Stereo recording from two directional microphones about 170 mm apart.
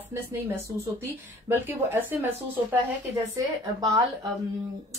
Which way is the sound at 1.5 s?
10° right (ahead or behind).